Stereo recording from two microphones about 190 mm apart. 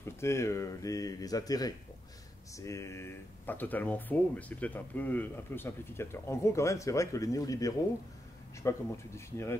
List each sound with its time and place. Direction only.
0.0 s speech: 15° left (ahead or behind)